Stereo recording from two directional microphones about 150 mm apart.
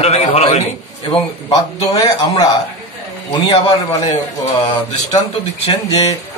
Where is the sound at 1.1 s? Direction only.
35° left (ahead or behind).